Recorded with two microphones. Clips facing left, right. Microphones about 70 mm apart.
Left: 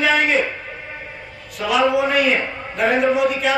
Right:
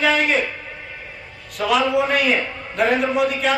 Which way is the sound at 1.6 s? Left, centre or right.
Centre.